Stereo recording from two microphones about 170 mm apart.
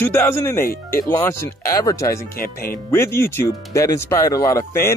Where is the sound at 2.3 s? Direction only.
60° left (ahead or behind).